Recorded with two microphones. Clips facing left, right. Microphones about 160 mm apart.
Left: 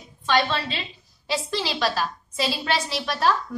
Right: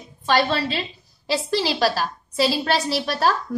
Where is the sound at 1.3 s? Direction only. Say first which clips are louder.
Right 4 dB; 35° right (ahead or behind).